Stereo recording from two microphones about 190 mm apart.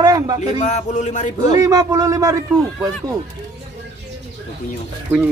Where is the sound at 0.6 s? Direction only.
35° left (ahead or behind).